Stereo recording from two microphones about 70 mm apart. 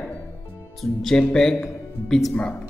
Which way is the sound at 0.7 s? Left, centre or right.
Centre.